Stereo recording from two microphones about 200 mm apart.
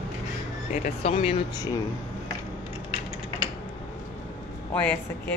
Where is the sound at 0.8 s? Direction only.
30° left (ahead or behind).